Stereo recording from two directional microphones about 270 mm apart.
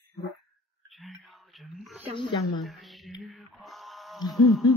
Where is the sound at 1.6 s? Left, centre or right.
Centre.